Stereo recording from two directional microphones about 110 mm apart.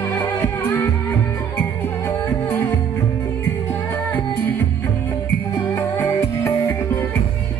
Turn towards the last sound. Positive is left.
turn(degrees=20)  # may be behind; listen again after turning